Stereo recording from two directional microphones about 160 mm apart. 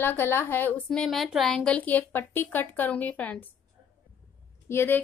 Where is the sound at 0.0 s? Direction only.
15° left (ahead or behind).